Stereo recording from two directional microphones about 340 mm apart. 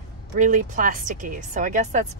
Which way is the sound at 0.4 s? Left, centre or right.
Right.